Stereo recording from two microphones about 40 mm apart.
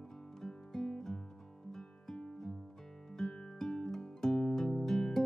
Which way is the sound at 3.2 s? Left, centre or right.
Centre.